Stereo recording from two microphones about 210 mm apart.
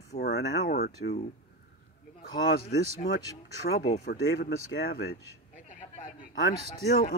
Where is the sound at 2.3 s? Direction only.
45° left (ahead or behind).